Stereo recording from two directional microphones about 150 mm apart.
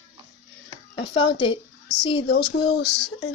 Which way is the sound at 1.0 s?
35° left (ahead or behind).